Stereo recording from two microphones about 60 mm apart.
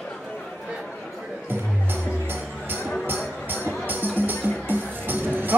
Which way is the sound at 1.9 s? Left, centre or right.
Right.